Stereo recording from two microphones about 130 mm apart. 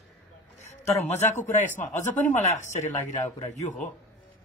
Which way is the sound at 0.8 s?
60° left (ahead or behind).